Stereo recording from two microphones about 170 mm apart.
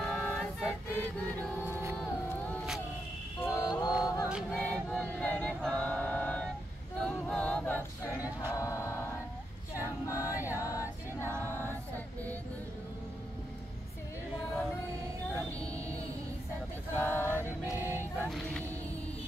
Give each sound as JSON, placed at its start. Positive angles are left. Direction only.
{"t": 0.0, "sound": "choir", "side_deg": 0}
{"t": 0.9, "sound": "choir", "side_deg": 10}
{"t": 3.4, "sound": "music", "side_deg": 20}
{"t": 4.3, "sound": "choir", "side_deg": -5}
{"t": 4.9, "sound": "a sound", "side_deg": 10}
{"t": 7.0, "sound": "a capella", "side_deg": 5}
{"t": 8.4, "sound": "choir", "side_deg": 20}
{"t": 10.0, "sound": "a capella", "side_deg": 15}
{"t": 10.4, "sound": "music", "side_deg": 15}
{"t": 15.3, "sound": "vehicle", "side_deg": 5}
{"t": 16.9, "sound": "music", "side_deg": 10}
{"t": 17.7, "sound": "music", "side_deg": -10}
{"t": 18.3, "sound": "music", "side_deg": 0}